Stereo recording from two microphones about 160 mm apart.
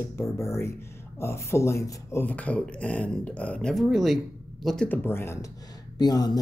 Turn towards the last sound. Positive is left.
turn(degrees=25)  # may be behind; listen again after turning